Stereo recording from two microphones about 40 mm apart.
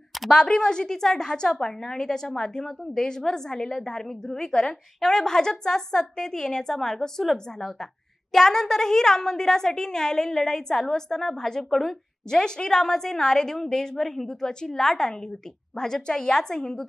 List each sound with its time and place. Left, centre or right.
0.3 s a woman's voice: centre